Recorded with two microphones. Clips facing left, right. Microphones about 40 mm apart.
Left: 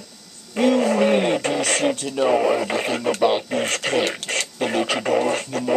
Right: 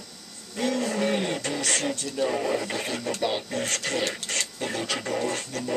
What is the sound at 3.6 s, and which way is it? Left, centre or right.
Speech, left.